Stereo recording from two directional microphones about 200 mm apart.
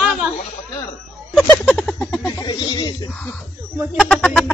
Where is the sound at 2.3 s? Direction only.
20° left (ahead or behind).